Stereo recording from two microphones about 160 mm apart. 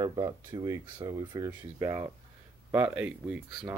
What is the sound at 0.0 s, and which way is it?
Speech, 25° right (ahead or behind).